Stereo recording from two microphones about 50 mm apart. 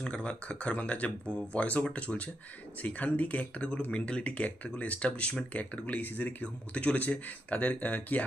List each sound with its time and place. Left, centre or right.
0.0 s speech: left
6.4 s speech: left